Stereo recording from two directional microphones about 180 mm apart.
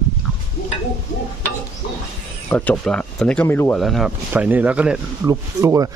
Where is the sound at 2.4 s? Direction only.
10° left (ahead or behind).